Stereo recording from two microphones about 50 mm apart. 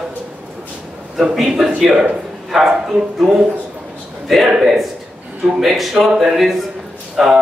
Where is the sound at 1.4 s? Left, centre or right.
Centre.